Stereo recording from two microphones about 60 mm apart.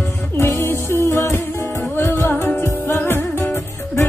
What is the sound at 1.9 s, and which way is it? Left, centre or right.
Music, left.